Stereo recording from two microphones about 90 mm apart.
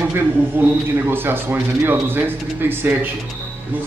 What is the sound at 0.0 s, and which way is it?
Speech, 25° right (ahead or behind).